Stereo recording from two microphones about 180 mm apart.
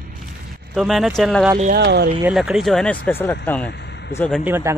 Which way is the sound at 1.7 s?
65° right (ahead or behind).